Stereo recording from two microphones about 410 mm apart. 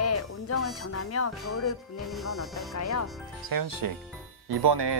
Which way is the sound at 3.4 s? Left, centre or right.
Right.